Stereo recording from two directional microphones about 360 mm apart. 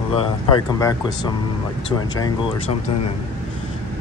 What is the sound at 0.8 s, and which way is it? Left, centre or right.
Speech, centre.